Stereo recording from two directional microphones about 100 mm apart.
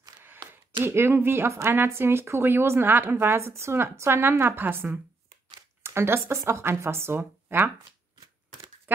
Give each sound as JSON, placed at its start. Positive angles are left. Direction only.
{"t": 0.8, "sound": "speech", "side_deg": -25}